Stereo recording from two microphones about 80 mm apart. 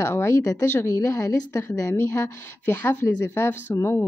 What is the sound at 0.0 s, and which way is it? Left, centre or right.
A woman's voice, left.